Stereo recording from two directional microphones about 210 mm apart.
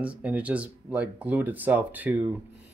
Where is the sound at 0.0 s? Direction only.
5° right (ahead or behind).